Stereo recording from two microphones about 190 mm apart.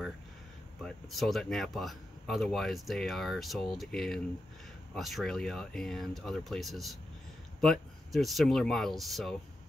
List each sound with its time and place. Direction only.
0.8 s speech: centre (ahead or behind)